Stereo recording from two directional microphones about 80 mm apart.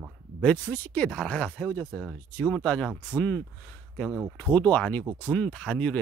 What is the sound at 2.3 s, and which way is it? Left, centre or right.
Speech, left.